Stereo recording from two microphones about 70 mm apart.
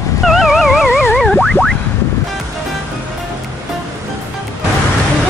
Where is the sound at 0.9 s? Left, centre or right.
Left.